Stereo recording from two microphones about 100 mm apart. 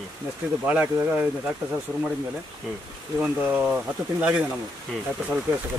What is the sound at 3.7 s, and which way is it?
Speech, 10° right (ahead or behind).